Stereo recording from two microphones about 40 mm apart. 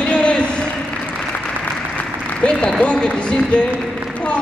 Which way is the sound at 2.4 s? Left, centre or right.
Left.